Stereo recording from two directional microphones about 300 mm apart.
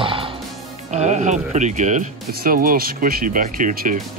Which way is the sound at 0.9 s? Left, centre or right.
Right.